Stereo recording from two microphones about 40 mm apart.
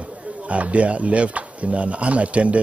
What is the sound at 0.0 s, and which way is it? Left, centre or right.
Speech, right.